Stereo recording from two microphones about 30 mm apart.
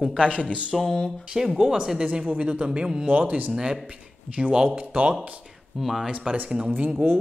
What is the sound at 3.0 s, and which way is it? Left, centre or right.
Speech, right.